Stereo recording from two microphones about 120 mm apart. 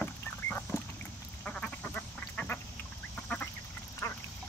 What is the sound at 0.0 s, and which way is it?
Vehicle, 15° left (ahead or behind).